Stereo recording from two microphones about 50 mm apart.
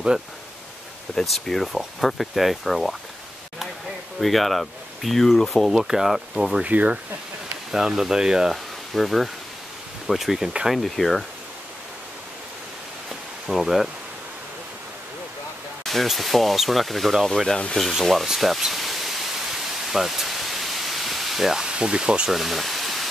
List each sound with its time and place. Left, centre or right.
1.2 s speech: centre
4.2 s speech: centre
6.6 s speech: right
7.7 s speech: centre
8.9 s speech: centre
13.5 s speech: centre
15.8 s speech: centre
18.6 s pink noise: centre
22.4 s pink noise: centre